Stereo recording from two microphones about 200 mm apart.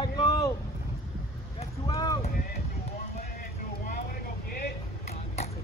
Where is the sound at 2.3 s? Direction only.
45° left (ahead or behind).